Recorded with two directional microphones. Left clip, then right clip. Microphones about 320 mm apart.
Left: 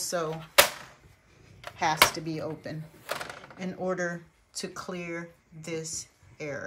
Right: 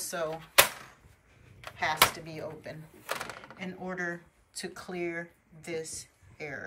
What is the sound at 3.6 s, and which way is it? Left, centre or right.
Speech, centre.